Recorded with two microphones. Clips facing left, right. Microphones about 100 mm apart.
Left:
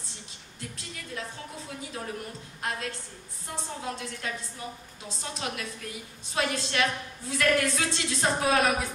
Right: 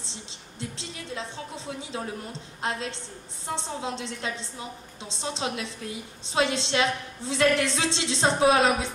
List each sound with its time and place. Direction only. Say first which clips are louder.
0.1 s music: right 4 dB; 25° right (ahead or behind)
2.6 s a woman's voice: right 3 dB; 25° right (ahead or behind)